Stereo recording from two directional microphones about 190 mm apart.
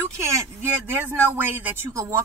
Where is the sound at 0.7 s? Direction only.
10° right (ahead or behind).